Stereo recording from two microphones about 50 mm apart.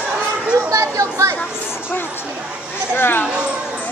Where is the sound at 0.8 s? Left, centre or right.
Right.